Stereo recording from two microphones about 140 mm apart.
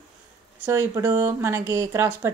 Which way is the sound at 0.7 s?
20° right (ahead or behind).